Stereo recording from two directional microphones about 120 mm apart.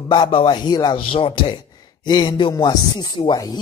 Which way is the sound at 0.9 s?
50° left (ahead or behind).